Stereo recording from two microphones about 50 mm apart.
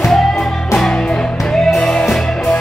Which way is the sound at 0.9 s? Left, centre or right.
Centre.